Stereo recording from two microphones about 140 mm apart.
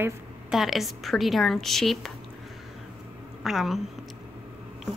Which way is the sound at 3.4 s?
Centre (ahead or behind).